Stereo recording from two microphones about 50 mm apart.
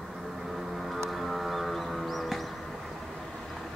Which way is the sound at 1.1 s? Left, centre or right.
Centre.